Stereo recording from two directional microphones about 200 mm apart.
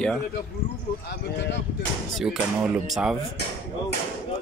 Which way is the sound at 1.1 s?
60° left (ahead or behind).